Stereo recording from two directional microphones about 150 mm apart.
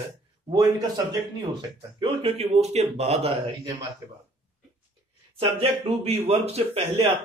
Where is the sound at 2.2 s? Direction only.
45° right (ahead or behind).